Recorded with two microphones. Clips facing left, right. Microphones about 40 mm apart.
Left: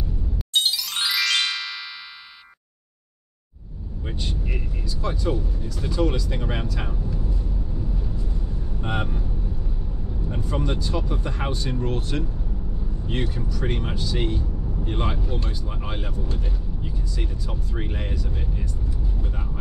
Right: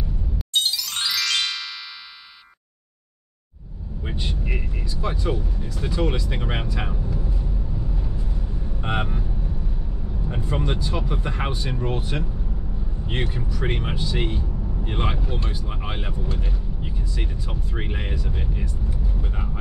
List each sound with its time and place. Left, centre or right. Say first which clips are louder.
0.7 s music: left 1 dB; centre
4.1 s speech: right 2 dB; centre
8.8 s speech: right 2 dB; right
10.2 s speech: right 1 dB; right